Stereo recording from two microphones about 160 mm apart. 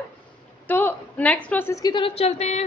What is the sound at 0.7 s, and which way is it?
A woman's voice, 10° left (ahead or behind).